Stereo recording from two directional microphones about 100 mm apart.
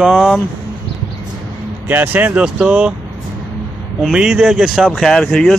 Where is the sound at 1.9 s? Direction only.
15° right (ahead or behind).